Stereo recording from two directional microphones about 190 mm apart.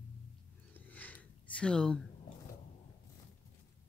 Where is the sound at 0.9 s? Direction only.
10° left (ahead or behind).